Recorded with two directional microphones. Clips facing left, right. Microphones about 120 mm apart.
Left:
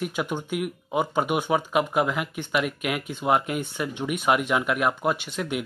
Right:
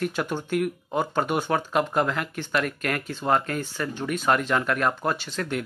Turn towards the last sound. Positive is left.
turn(degrees=10)  # may be behind; listen again after turning